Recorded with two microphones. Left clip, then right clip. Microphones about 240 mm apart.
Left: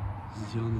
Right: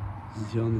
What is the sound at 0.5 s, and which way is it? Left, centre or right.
Speech, centre.